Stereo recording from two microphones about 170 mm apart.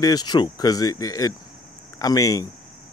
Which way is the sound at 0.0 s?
25° left (ahead or behind).